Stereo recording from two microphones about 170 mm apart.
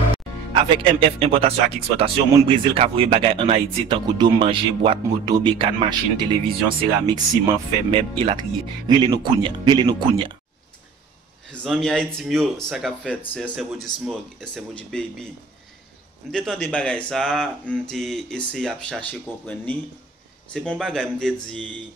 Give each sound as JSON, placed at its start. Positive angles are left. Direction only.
{"t": 0.6, "sound": "speech", "side_deg": -30}
{"t": 11.6, "sound": "speech", "side_deg": 0}
{"t": 16.3, "sound": "speech", "side_deg": 5}